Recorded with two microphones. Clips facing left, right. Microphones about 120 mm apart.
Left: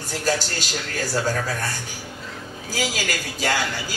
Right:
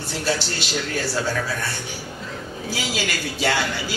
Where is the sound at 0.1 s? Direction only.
45° left (ahead or behind).